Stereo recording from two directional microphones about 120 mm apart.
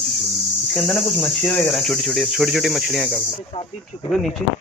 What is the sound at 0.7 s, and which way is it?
Cricket, 5° left (ahead or behind).